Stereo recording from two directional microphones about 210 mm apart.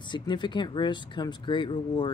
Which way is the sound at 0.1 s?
20° left (ahead or behind).